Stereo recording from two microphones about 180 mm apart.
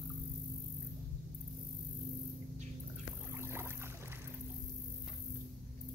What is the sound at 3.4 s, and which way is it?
Boat, 15° right (ahead or behind).